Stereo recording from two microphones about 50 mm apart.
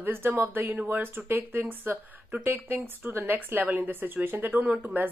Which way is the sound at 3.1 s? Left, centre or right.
Right.